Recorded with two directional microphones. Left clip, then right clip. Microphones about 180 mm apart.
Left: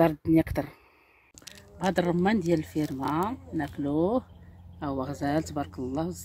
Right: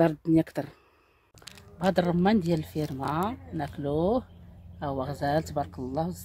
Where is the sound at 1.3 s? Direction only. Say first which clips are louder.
Even; 15° right (ahead or behind).